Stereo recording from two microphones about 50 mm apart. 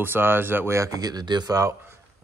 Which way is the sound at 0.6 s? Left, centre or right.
Right.